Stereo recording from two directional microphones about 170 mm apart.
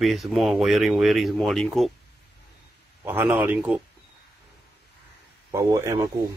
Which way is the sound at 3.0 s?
10° right (ahead or behind).